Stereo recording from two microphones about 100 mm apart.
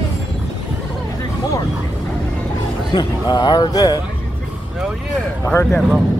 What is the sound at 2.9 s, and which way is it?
A man's voice, 45° left (ahead or behind).